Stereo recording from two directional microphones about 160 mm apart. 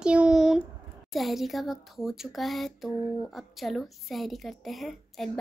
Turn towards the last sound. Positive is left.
turn(degrees=0)  # may be behind; listen again after turning